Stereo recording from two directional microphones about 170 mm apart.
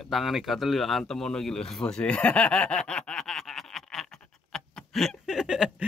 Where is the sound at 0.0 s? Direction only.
Centre (ahead or behind).